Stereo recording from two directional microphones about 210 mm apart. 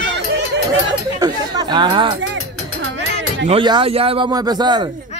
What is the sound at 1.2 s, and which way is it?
Speech, 20° right (ahead or behind).